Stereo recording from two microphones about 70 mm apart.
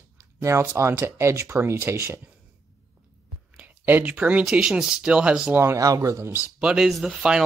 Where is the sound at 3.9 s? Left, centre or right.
Right.